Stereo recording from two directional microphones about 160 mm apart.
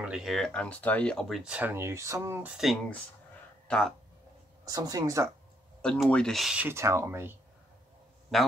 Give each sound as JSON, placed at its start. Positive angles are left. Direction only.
{"t": 0.0, "sound": "speech", "side_deg": -5}
{"t": 1.4, "sound": "speech", "side_deg": -10}
{"t": 4.6, "sound": "speech", "side_deg": -20}
{"t": 5.8, "sound": "speech", "side_deg": 5}
{"t": 8.3, "sound": "speech", "side_deg": 0}